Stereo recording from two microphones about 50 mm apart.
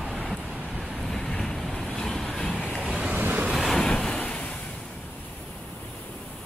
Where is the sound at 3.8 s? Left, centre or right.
Centre.